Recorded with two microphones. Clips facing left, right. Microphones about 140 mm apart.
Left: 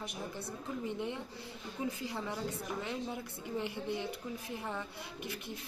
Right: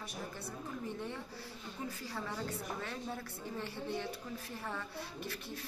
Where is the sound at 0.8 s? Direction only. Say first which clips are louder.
Left 5 dB; 15° left (ahead or behind).